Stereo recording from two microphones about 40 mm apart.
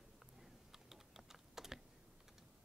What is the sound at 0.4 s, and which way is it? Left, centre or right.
Typing, centre.